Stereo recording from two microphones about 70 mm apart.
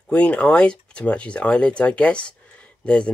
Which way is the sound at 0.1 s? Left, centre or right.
Centre.